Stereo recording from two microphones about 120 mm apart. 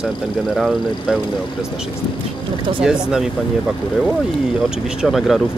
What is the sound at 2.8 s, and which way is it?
Speech, 5° right (ahead or behind).